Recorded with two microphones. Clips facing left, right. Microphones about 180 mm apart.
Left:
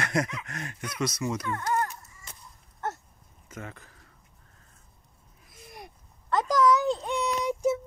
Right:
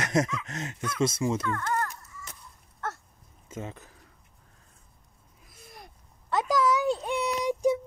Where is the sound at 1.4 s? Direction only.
15° left (ahead or behind).